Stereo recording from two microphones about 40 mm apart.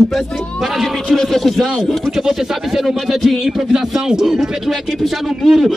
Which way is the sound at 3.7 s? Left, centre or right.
Centre.